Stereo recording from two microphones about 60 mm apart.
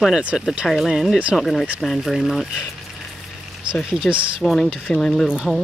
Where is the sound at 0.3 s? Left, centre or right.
Centre.